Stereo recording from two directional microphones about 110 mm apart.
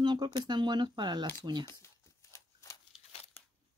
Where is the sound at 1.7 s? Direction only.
25° left (ahead or behind).